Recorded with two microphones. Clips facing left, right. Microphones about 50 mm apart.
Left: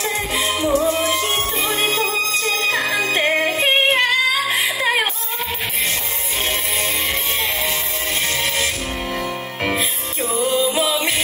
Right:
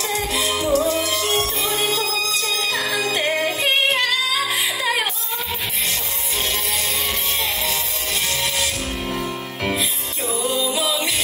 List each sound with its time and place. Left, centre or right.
0.0 s music: left
9.6 s music: left